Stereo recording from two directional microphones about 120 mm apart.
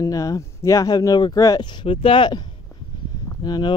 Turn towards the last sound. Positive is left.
turn(degrees=35)  # may be behind; listen again after turning